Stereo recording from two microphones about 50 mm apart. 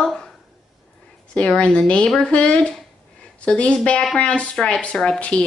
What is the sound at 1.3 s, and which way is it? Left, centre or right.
A woman's voice, left.